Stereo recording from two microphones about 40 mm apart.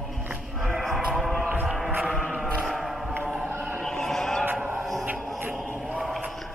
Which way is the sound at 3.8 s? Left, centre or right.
Centre.